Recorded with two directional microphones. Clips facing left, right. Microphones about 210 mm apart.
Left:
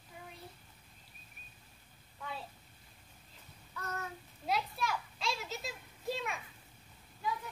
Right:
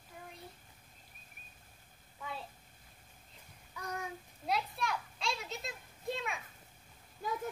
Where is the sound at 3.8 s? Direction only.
15° right (ahead or behind).